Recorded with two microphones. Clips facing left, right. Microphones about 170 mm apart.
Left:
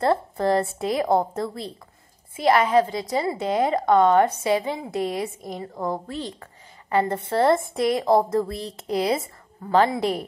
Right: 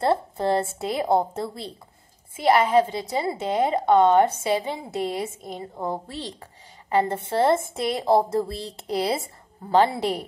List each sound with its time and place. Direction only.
0.0 s a woman's voice: 30° right (ahead or behind)